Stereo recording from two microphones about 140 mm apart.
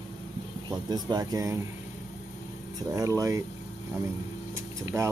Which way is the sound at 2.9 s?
25° right (ahead or behind).